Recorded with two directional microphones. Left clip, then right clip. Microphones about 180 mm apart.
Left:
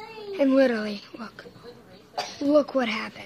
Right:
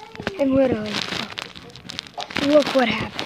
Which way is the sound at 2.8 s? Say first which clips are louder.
Right 6 dB; centre (ahead or behind).